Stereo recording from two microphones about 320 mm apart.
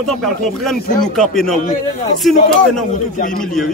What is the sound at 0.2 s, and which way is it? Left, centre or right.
Speech, centre.